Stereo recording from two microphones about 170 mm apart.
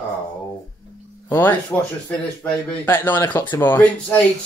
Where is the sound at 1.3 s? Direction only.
10° left (ahead or behind).